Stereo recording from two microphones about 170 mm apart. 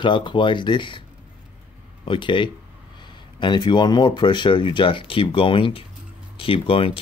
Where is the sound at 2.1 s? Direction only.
30° left (ahead or behind).